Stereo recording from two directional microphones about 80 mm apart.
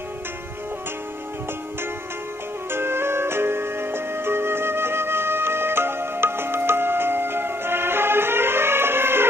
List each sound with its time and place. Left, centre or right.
2.7 s music: right